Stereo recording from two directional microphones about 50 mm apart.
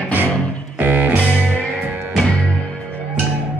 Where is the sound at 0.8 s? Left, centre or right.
Right.